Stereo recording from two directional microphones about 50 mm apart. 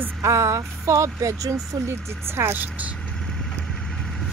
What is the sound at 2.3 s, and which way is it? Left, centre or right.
Speech, right.